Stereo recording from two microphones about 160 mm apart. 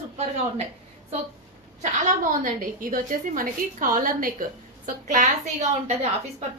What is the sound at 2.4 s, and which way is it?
A woman's voice, 55° right (ahead or behind).